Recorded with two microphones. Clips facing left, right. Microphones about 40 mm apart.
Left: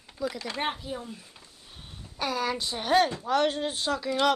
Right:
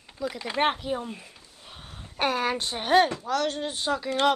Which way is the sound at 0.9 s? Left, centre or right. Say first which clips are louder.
Right 5 dB; right.